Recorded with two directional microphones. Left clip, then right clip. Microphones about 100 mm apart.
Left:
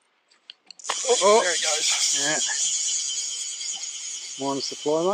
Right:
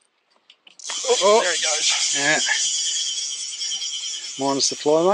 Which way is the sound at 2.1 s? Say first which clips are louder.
Right 5 dB; 50° right (ahead or behind).